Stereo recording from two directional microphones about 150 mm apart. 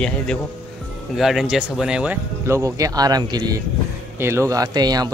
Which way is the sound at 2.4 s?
20° right (ahead or behind).